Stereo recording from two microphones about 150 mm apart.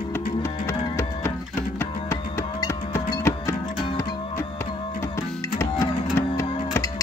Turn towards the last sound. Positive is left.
turn(degrees=20)  # may be behind; listen again after turning